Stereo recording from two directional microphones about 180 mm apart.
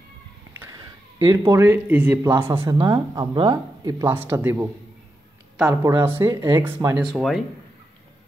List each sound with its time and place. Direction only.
0.6 s speech: 20° right (ahead or behind)
2.6 s speech: 25° right (ahead or behind)
4.0 s speech: 10° right (ahead or behind)
7.0 s speech: centre (ahead or behind)